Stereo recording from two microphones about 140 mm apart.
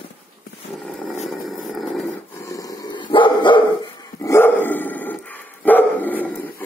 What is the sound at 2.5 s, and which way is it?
Dog, 25° left (ahead or behind).